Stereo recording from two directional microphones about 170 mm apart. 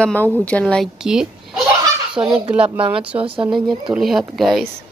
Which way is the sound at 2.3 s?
5° right (ahead or behind).